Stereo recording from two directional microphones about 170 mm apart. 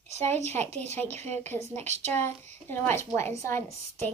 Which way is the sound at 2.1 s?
15° left (ahead or behind).